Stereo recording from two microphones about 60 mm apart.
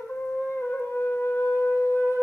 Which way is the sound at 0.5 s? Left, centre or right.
Left.